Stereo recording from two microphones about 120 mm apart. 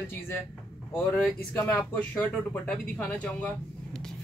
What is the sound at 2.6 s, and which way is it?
Speech, 10° left (ahead or behind).